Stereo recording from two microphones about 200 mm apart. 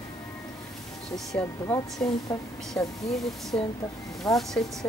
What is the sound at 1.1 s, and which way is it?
Speech, 5° left (ahead or behind).